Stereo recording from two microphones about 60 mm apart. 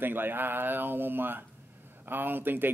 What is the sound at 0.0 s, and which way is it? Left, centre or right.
Speech, right.